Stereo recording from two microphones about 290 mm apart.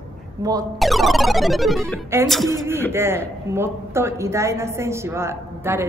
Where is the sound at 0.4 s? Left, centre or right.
Centre.